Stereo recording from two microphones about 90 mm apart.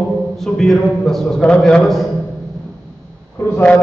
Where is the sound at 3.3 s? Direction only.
25° left (ahead or behind).